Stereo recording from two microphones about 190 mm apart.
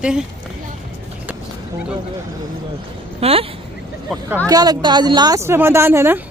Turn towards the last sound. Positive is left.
turn(degrees=-15)  # may be behind; listen again after turning